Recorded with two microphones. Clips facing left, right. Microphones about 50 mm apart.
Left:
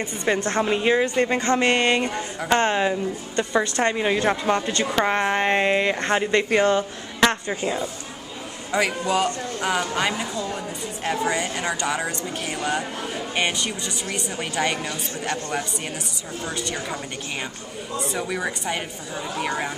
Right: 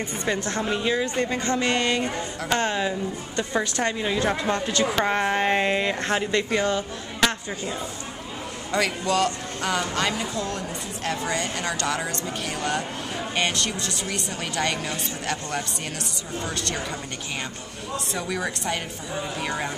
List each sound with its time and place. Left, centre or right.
0.3 s a woman's voice: left
2.4 s speech: centre
3.3 s speech: centre
3.9 s a woman's voice: left; by 6.2 s centre
6.3 s a woman's voice: left
8.7 s speech: centre